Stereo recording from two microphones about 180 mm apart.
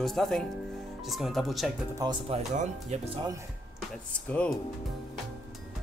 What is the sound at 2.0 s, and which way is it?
Speech, 20° right (ahead or behind).